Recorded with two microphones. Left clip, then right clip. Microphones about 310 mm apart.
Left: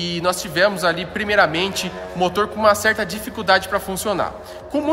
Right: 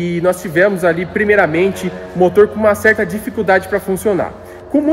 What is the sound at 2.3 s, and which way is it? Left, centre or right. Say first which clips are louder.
Speech: right 4 dB; centre.